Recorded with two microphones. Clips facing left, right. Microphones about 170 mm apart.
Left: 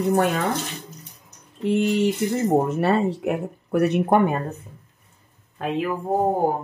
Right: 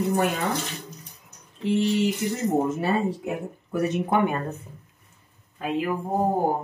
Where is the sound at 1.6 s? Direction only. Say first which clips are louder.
Left 2 dB; 55° left (ahead or behind).